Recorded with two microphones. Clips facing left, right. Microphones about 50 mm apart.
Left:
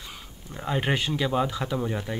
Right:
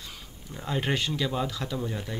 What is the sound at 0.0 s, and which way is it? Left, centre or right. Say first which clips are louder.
Speech: left 2 dB; centre.